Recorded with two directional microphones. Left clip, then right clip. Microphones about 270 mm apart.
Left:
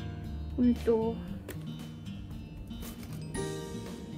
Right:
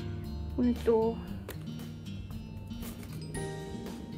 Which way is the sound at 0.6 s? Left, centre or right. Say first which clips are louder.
Left 1 dB; right.